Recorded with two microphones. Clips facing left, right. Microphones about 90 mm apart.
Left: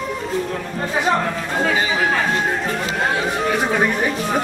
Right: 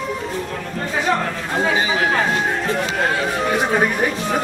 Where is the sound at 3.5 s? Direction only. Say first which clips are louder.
Right 2 dB; 20° right (ahead or behind).